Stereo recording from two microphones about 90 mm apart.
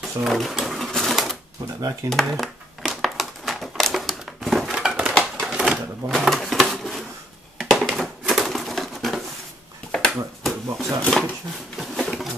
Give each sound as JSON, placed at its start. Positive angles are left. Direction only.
{"t": 0.0, "sound": "typewriter", "side_deg": 0}
{"t": 2.0, "sound": "crumpling", "side_deg": 0}
{"t": 5.4, "sound": "sewing machine", "side_deg": -5}
{"t": 7.5, "sound": "bird", "side_deg": 0}
{"t": 9.8, "sound": "a sound", "side_deg": 5}